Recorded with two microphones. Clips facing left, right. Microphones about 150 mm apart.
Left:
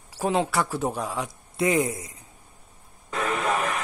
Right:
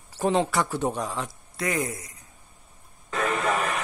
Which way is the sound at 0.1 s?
5° left (ahead or behind).